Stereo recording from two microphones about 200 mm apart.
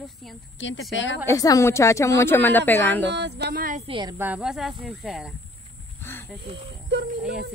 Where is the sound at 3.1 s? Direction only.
60° right (ahead or behind).